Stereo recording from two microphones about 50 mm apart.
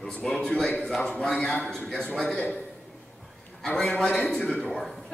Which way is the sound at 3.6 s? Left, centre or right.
Centre.